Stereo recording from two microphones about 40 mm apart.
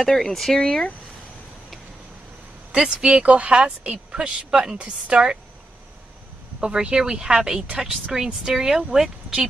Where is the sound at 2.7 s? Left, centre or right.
Centre.